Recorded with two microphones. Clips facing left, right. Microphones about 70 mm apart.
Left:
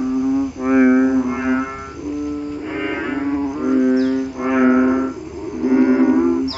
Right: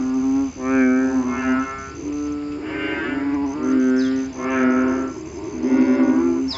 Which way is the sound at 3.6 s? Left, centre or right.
Centre.